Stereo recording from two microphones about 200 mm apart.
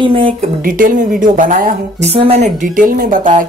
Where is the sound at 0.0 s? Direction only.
25° right (ahead or behind).